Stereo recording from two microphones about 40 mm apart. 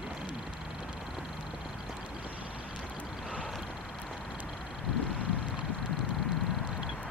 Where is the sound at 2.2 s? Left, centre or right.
Right.